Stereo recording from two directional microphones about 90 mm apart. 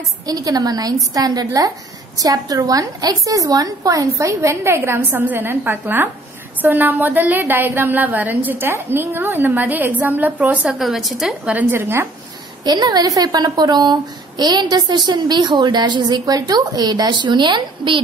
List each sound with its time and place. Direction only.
0.3 s a woman's voice: 45° right (ahead or behind); by 10.8 s 15° right (ahead or behind)
10.8 s a woman's voice: centre (ahead or behind)
11.5 s a woman's voice: 25° right (ahead or behind)
12.6 s a woman's voice: 50° right (ahead or behind)